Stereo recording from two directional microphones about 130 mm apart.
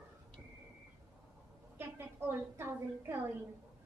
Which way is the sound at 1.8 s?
15° right (ahead or behind).